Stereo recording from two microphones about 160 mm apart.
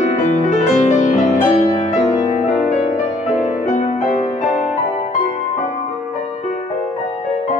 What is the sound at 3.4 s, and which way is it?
Music, 50° left (ahead or behind).